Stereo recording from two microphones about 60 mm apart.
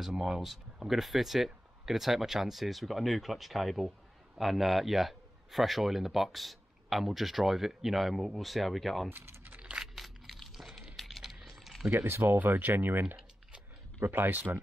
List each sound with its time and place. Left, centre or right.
0.0 s a man's voice: centre
9.1 s speech: right
9.5 s a sound: centre
9.9 s a sound: centre
11.9 s speech: right
14.0 s speech: right